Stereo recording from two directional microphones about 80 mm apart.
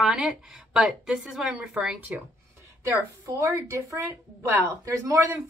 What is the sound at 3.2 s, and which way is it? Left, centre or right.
Speech, right.